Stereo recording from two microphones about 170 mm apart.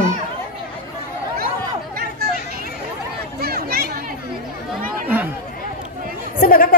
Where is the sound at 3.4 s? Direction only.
65° right (ahead or behind).